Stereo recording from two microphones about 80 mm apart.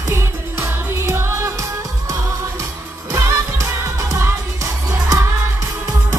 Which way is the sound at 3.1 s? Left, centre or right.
Right.